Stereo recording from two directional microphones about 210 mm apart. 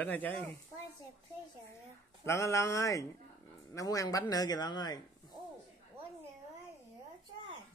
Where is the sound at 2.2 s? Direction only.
15° left (ahead or behind).